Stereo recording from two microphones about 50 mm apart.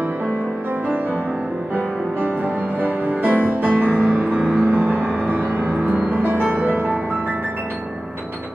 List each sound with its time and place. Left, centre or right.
2.2 s music: right